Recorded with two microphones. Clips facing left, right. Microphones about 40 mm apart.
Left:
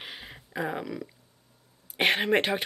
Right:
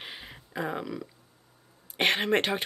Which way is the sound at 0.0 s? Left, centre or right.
Centre.